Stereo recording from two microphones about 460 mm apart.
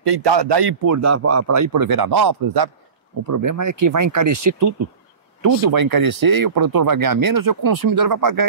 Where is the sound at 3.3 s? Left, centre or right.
Right.